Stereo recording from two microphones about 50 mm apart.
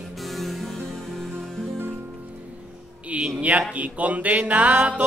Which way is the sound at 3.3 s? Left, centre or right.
Right.